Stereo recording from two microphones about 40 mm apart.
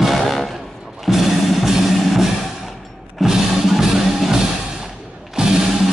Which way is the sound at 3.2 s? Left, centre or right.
Centre.